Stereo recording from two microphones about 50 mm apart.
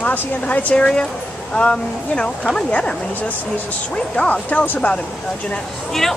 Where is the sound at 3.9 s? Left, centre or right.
Left.